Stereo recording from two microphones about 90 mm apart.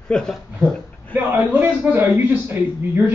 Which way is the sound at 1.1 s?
20° right (ahead or behind).